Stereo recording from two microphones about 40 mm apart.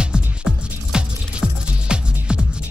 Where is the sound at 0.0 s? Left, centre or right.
Right.